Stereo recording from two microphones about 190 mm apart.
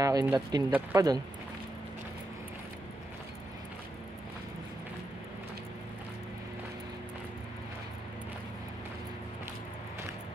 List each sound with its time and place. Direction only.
0.0 s speech: 20° right (ahead or behind)
0.7 s speech: 10° right (ahead or behind)